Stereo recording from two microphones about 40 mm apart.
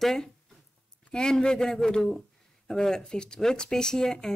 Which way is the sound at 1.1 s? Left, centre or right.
Centre.